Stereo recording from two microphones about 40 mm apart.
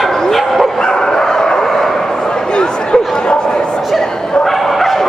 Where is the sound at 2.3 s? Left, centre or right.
Left.